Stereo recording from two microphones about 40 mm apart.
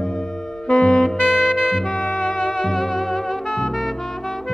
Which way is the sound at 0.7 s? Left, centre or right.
Left.